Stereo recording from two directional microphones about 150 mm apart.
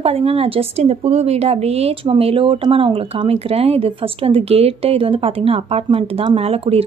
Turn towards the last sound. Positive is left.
turn(degrees=-40)  # may be behind; listen again after turning